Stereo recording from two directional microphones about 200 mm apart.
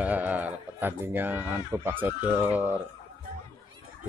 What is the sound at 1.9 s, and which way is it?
Speech, 10° right (ahead or behind).